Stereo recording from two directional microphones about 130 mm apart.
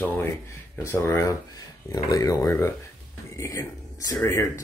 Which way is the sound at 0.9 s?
20° left (ahead or behind).